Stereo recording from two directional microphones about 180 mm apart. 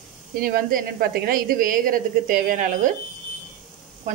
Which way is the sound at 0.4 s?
50° right (ahead or behind).